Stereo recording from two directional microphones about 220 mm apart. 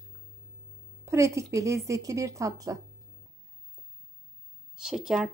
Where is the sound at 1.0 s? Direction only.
15° right (ahead or behind).